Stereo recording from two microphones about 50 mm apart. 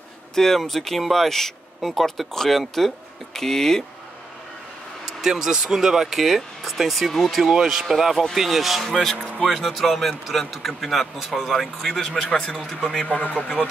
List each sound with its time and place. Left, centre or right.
0.3 s speech: centre
5.0 s speech: centre
12.3 s speech: centre
13.0 s a man's voice: left